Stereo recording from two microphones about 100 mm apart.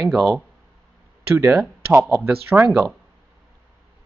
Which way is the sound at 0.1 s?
5° right (ahead or behind).